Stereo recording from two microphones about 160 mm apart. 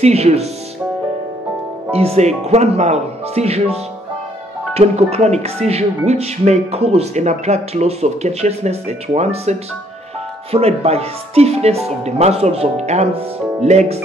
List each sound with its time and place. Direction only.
0.0 s speech: 40° right (ahead or behind)
1.9 s speech: 40° right (ahead or behind)